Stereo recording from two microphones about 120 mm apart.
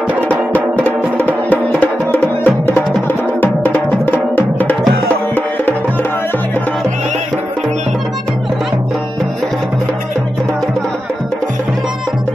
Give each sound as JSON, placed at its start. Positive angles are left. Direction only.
{"t": 0.7, "sound": "music", "side_deg": 15}